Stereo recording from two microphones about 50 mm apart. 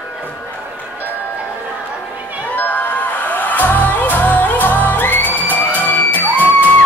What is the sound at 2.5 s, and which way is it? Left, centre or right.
Music, left.